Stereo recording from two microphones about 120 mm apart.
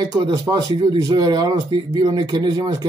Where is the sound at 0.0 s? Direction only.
30° right (ahead or behind).